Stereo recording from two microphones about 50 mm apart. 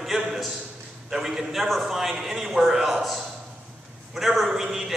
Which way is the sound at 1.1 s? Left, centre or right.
Centre.